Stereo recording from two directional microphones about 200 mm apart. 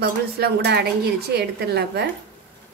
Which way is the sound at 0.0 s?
55° right (ahead or behind).